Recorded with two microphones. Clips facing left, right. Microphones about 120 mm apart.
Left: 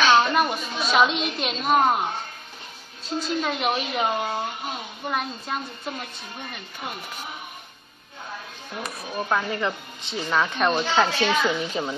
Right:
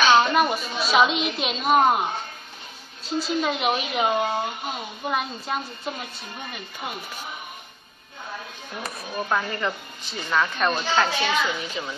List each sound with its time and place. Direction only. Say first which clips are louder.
0.0 s a woman's voice: right 1 dB; 5° right (ahead or behind)
3.2 s speech: right 2 dB; 5° right (ahead or behind)
9.1 s speech: left 1 dB; centre (ahead or behind)
11.8 s speech: left 4 dB; 35° left (ahead or behind)